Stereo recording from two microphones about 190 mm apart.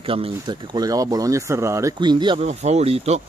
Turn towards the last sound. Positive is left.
turn(degrees=-35)  # may be behind; listen again after turning